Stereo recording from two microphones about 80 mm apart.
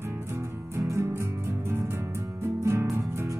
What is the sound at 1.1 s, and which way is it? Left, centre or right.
Music, right.